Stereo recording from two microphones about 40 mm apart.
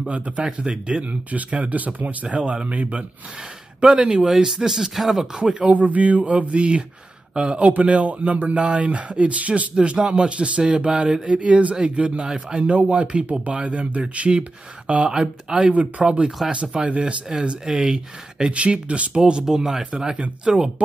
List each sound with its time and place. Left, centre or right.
0.1 s speech: right
2.2 s speech: right
2.7 s speech: right
3.8 s speech: right
4.3 s speech: centre
5.2 s speech: centre
5.7 s speech: right
9.8 s speech: right
15.7 s speech: right
18.5 s speech: right
19.4 s speech: centre
20.2 s speech: right